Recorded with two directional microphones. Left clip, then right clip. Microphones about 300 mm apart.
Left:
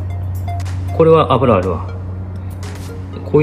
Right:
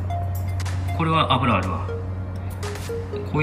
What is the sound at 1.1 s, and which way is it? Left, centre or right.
Speech, right.